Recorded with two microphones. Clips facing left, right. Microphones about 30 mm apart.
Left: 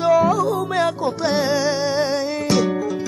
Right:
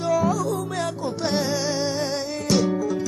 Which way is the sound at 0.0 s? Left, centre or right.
Left.